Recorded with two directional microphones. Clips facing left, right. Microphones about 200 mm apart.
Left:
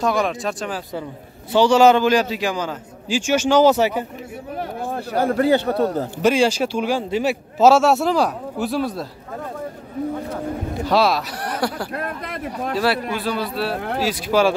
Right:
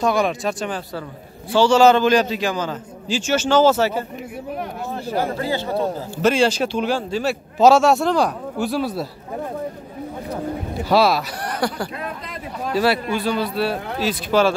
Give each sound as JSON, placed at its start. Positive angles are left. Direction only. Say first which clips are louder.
{"t": 0.0, "sound": "a man's voice", "louder": "right 1 dB", "side_deg": 0}
{"t": 1.5, "sound": "a man's voice", "louder": "even", "side_deg": 15}
{"t": 4.9, "sound": "speech", "louder": "left 4 dB", "side_deg": 55}
{"t": 6.2, "sound": "a man's voice", "louder": "even", "side_deg": 10}
{"t": 7.5, "sound": "a man's voice", "louder": "right 1 dB", "side_deg": 5}
{"t": 10.9, "sound": "a man's voice", "louder": "right 2 dB", "side_deg": -5}
{"t": 11.9, "sound": "a sound", "louder": "left 3 dB", "side_deg": 60}
{"t": 12.7, "sound": "a man's voice", "louder": "right 3 dB", "side_deg": 0}